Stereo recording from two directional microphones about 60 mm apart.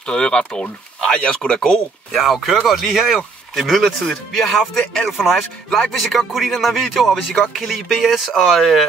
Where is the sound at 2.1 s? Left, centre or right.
Centre.